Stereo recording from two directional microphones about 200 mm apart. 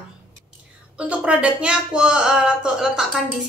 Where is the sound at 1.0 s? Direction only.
5° right (ahead or behind).